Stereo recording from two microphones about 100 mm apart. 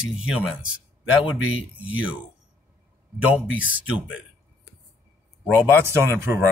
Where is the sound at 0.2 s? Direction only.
5° right (ahead or behind).